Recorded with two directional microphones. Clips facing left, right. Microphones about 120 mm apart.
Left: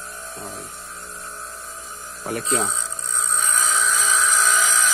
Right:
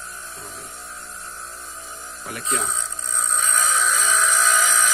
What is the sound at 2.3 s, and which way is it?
Speech, 40° left (ahead or behind).